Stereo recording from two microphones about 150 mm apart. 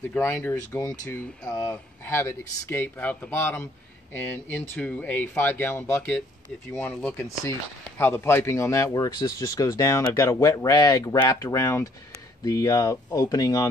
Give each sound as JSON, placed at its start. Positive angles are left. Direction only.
{"t": 0.0, "sound": "speech", "side_deg": 15}